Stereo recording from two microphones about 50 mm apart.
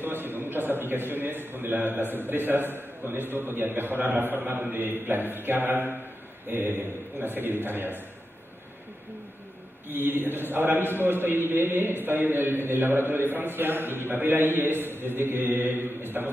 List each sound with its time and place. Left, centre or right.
0.0 s a man's voice: right
9.8 s a man's voice: right
16.1 s a man's voice: right